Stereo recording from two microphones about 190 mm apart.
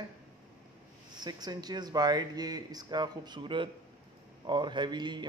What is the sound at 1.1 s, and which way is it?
Speech, 20° right (ahead or behind).